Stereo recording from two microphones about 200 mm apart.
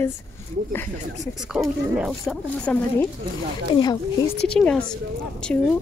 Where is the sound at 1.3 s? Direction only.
Centre (ahead or behind).